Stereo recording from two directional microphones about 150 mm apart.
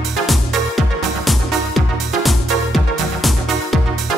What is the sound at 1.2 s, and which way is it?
Music, centre (ahead or behind).